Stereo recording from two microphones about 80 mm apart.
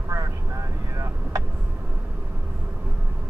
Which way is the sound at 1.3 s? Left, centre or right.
Right.